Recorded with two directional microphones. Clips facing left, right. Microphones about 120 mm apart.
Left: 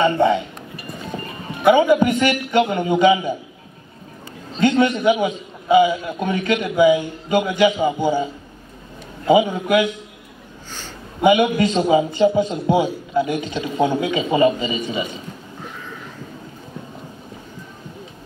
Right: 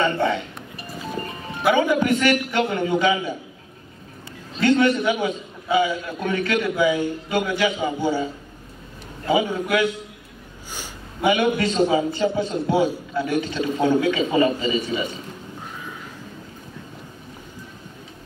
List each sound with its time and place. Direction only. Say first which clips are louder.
0.0 s music: left 5 dB; 20° left (ahead or behind)
1.7 s a man's voice: left 5 dB; 20° left (ahead or behind)
4.6 s a sound: left 1 dB; 20° left (ahead or behind)
5.2 s a man's voice: left 3 dB; 20° left (ahead or behind)
11.1 s a man's voice: left 4 dB; 15° left (ahead or behind)